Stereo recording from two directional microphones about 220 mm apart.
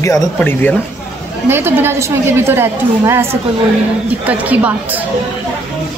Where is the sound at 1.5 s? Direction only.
10° right (ahead or behind).